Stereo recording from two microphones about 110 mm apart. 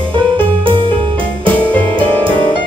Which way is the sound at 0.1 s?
50° right (ahead or behind).